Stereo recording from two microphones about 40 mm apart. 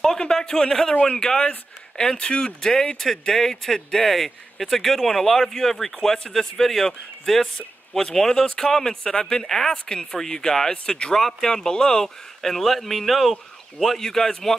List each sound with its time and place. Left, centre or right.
0.0 s a man's voice: centre
2.6 s speech: centre
11.1 s speech: centre
12.4 s speech: centre
13.9 s speech: centre